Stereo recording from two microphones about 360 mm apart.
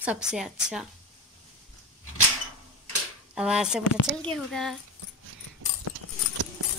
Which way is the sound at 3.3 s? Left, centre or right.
Centre.